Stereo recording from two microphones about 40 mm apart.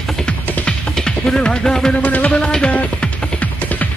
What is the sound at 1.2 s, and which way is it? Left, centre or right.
Music, centre.